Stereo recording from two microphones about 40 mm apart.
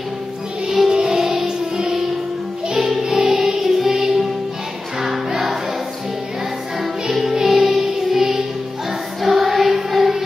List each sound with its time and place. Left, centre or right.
0.8 s music: centre
5.0 s music: centre
6.8 s music: centre
9.2 s choir: centre